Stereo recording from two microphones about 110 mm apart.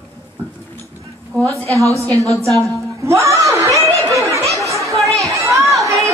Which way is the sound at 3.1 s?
25° right (ahead or behind).